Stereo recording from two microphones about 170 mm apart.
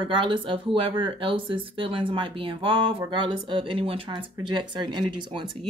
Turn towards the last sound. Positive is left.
turn(degrees=-25)  # may be behind; listen again after turning